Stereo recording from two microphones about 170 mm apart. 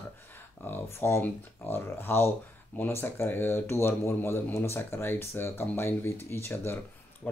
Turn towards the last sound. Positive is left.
turn(degrees=15)  # may be behind; listen again after turning